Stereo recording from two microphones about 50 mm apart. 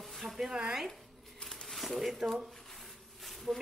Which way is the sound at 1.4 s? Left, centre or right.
Centre.